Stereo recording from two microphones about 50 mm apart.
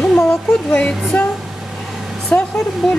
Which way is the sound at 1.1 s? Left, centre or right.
Left.